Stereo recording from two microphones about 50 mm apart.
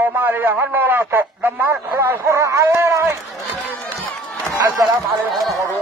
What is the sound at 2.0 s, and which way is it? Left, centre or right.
Speech, right.